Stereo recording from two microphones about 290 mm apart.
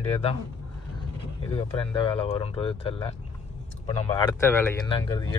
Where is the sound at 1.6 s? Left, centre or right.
Centre.